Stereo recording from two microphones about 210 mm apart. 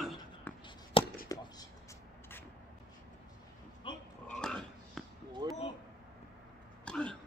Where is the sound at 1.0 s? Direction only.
25° left (ahead or behind).